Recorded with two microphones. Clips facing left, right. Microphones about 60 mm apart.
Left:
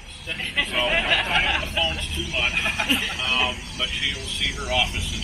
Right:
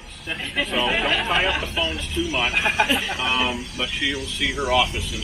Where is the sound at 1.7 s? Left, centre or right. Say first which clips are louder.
Even; centre.